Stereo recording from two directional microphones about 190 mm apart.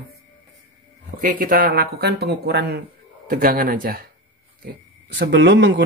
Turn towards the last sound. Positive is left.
turn(degrees=-65)  # may be behind; listen again after turning